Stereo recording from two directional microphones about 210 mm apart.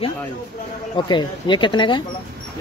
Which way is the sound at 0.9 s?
20° left (ahead or behind).